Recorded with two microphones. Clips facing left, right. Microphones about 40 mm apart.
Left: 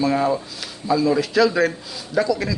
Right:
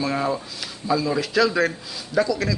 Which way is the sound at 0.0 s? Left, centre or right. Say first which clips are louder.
Left 4 dB; centre.